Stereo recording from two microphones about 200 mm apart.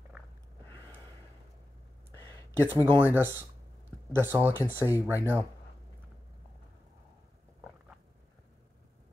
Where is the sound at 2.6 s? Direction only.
10° right (ahead or behind).